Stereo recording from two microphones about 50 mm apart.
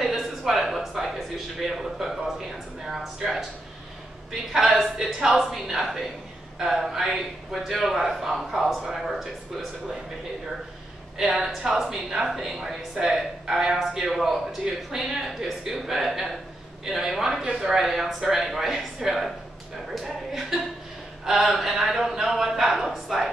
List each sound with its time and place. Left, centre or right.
0.0 s a sound: centre
1.8 s a man's voice: centre
4.3 s a man's voice: centre
4.9 s speech: centre
5.4 s a man's voice: centre
11.1 s a man's voice: centre
19.9 s a sound: centre
21.3 s a man's voice: centre